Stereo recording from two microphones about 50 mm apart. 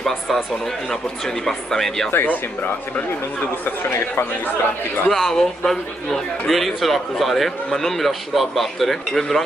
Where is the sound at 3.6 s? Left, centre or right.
Left.